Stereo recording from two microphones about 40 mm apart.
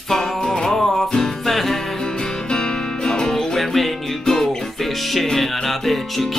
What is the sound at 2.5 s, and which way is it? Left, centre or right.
Music, centre.